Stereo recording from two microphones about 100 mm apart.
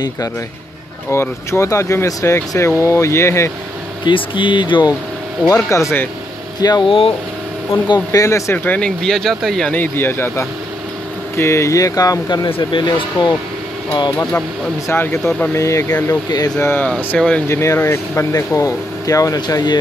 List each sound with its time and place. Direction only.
1.1 s speech: 25° left (ahead or behind)
4.0 s speech: 55° left (ahead or behind)
5.5 s speech: 30° left (ahead or behind)
6.6 s speech: 40° left (ahead or behind)
6.9 s speech: 65° left (ahead or behind)
7.9 s speech: 35° left (ahead or behind); by 9.7 s 5° left (ahead or behind)
9.7 s speech: 20° left (ahead or behind); by 12.4 s 40° left (ahead or behind)
12.4 s speech: 65° left (ahead or behind)
14.9 s speech: 25° left (ahead or behind)
15.5 s speech: 30° left (ahead or behind)
16.1 s speech: 40° left (ahead or behind)
16.5 s speech: 20° left (ahead or behind)
17.5 s speech: 25° left (ahead or behind); by 19.8 s 45° left (ahead or behind)